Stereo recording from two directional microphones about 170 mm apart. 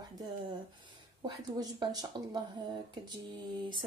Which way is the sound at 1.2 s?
25° right (ahead or behind).